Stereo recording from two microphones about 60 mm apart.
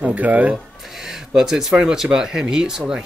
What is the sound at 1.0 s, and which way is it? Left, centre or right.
Speech, centre.